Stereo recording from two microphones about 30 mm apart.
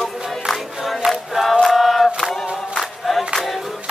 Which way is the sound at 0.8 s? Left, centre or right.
Centre.